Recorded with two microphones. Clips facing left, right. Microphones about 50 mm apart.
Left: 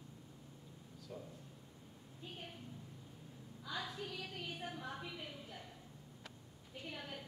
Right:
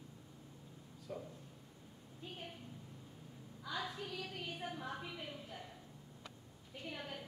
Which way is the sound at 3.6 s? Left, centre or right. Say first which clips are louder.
Right 1 dB; centre.